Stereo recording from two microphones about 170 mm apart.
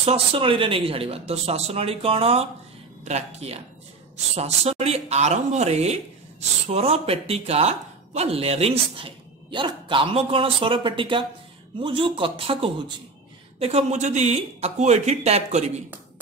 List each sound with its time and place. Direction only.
0.0 s speech: 35° right (ahead or behind)